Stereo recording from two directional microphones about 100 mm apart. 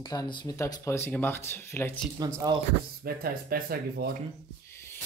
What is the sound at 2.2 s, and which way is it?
Speech, 40° right (ahead or behind).